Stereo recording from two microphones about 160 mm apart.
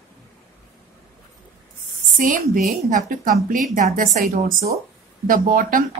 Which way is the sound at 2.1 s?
55° right (ahead or behind).